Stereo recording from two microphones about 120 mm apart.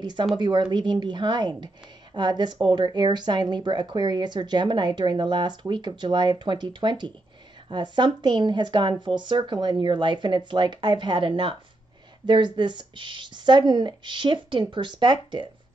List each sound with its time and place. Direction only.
0.0 s speech: 40° right (ahead or behind)